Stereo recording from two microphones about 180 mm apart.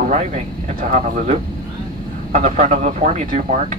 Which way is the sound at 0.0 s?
40° right (ahead or behind).